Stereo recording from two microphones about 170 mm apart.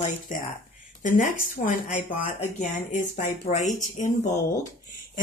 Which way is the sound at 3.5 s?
45° left (ahead or behind).